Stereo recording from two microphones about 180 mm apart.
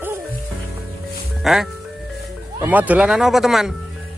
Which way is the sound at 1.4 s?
Centre (ahead or behind).